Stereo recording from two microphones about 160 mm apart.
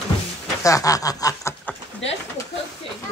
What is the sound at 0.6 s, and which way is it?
Snicker, 20° left (ahead or behind).